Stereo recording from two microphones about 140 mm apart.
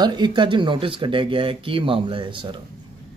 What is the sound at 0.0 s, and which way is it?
Speech, 30° right (ahead or behind).